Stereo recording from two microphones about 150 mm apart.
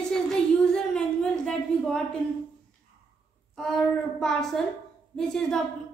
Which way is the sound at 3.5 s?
5° left (ahead or behind).